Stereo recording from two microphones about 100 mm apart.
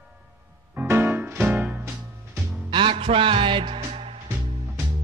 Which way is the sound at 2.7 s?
60° right (ahead or behind).